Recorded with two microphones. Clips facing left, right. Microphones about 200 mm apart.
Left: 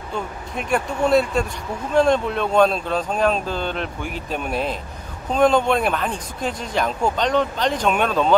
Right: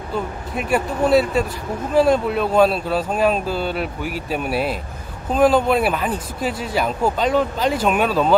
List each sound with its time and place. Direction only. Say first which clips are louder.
0.1 s speech: right 3 dB; 5° right (ahead or behind)